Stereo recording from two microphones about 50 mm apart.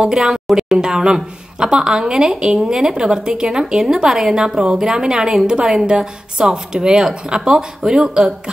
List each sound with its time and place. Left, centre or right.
0.0 s speech: centre